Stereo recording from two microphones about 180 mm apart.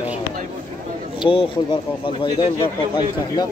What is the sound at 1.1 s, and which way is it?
Speech, 30° left (ahead or behind).